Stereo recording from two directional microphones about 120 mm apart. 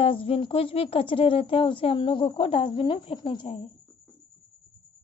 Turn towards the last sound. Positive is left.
turn(degrees=50)  # may be behind; listen again after turning